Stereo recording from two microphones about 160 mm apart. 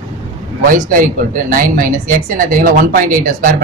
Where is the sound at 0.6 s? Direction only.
60° right (ahead or behind).